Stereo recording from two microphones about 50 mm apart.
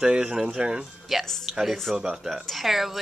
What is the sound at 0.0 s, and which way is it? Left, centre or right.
Speech, centre.